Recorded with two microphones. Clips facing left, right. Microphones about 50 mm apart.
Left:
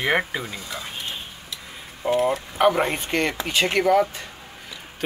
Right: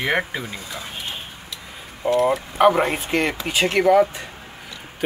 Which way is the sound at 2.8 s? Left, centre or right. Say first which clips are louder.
Right 2 dB; centre.